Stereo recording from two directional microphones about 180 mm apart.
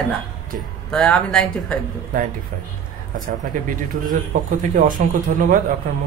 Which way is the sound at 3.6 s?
50° right (ahead or behind).